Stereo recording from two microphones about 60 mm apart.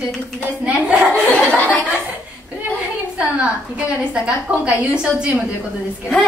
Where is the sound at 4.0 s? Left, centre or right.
Centre.